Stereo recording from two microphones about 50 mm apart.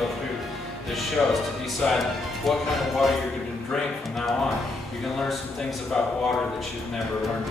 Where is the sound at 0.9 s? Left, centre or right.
Centre.